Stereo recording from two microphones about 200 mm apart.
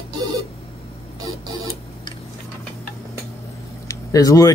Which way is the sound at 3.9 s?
15° left (ahead or behind).